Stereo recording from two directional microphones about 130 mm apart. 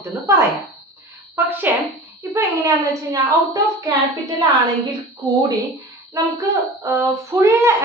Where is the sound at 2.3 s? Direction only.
25° right (ahead or behind).